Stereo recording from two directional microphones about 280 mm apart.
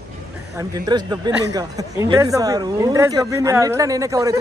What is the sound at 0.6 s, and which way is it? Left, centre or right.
Speech, centre.